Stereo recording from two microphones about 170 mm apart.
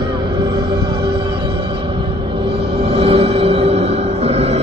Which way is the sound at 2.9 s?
35° right (ahead or behind).